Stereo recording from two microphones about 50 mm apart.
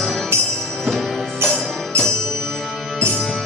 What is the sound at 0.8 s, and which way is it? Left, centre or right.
Music, centre.